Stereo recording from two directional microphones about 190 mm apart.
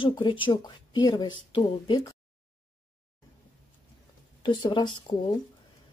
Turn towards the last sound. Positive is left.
turn(degrees=25)  # may be behind; listen again after turning